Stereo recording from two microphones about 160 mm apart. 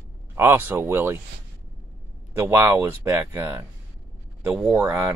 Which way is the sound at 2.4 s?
15° right (ahead or behind).